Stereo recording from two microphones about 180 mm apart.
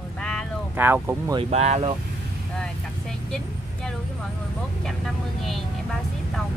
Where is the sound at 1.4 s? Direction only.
40° right (ahead or behind).